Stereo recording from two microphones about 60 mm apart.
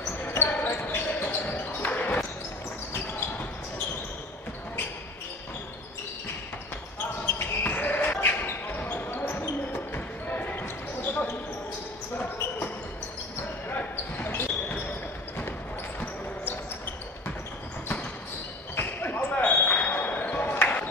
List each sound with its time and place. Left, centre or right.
0.4 s basketball bounce: left
7.3 s basketball bounce: left
13.7 s basketball bounce: left
18.8 s basketball bounce: left
20.6 s music: left